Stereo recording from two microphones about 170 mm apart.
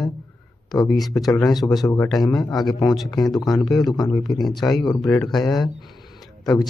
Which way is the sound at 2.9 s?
Centre (ahead or behind).